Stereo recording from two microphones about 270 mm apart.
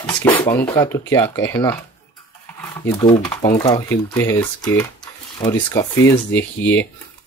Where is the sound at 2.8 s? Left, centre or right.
Centre.